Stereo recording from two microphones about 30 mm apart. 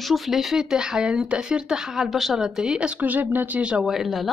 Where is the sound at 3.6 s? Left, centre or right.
Right.